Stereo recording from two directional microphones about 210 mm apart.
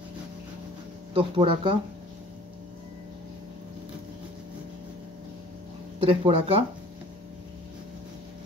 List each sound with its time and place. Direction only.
1.1 s speech: 25° right (ahead or behind)
6.0 s speech: 25° right (ahead or behind)